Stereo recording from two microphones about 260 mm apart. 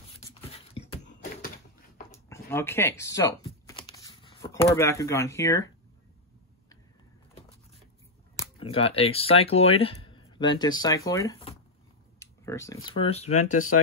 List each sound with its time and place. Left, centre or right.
0.3 s beatboxing: left
2.0 s speech: centre
3.6 s a sound: centre
8.4 s speech: left